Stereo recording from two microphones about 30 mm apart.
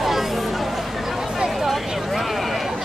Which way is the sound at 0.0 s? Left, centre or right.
Centre.